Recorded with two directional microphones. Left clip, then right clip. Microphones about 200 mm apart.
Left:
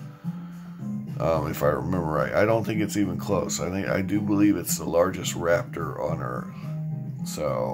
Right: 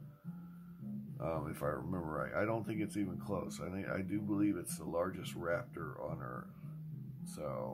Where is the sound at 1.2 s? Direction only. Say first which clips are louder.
Left 16 dB; 5° right (ahead or behind).